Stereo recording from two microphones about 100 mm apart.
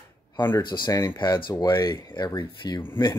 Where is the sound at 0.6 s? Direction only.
50° left (ahead or behind).